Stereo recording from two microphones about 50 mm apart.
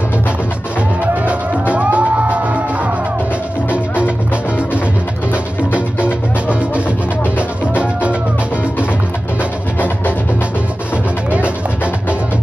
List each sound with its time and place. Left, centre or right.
1.0 s music: right
6.0 s music: right